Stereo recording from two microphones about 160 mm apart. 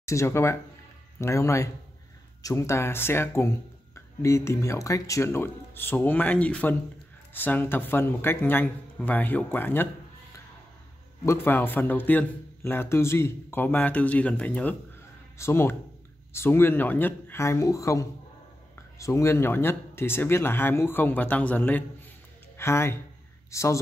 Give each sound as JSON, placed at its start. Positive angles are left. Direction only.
{"t": 0.0, "sound": "speech", "side_deg": 20}
{"t": 11.2, "sound": "speech", "side_deg": 15}